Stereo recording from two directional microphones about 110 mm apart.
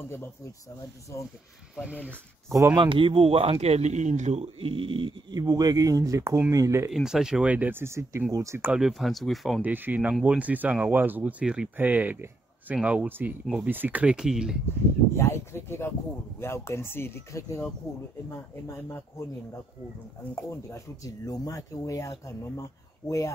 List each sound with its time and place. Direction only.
2.7 s speech: 50° right (ahead or behind)
5.4 s speech: 35° right (ahead or behind)
6.9 s speech: 5° right (ahead or behind); by 8.7 s 25° right (ahead or behind)
8.7 s speech: centre (ahead or behind)
9.6 s speech: 15° right (ahead or behind)
15.1 s speech: 25° left (ahead or behind)
20.4 s speech: 30° left (ahead or behind)